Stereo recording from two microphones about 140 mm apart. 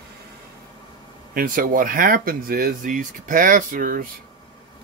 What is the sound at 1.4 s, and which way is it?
Speech, 85° right.